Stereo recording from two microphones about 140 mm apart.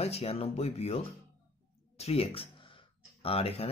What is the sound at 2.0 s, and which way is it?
Speech, 45° left (ahead or behind).